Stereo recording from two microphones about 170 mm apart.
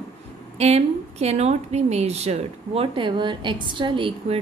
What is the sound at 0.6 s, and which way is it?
Speech, 40° right (ahead or behind).